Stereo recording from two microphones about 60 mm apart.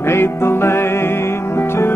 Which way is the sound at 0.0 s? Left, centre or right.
Left.